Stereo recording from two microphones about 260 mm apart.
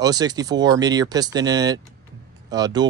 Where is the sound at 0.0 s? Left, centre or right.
Centre.